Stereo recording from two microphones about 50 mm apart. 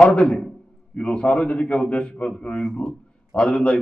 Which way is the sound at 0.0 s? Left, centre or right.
Left.